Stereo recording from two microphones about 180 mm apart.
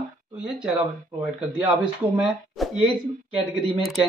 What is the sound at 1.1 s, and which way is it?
Speech, 25° right (ahead or behind).